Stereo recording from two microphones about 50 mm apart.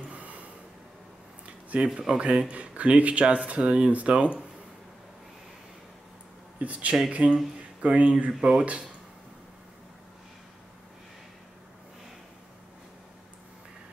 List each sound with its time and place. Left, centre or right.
0.1 s a sound: right
2.0 s speech: centre
6.6 s speech: right
8.3 s speech: centre